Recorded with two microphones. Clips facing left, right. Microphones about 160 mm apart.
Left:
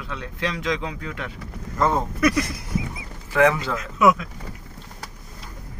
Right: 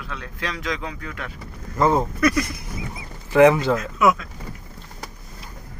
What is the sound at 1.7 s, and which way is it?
Speech, 5° right (ahead or behind).